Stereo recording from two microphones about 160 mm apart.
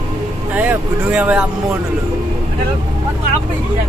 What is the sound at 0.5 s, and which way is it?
Speech, 10° right (ahead or behind).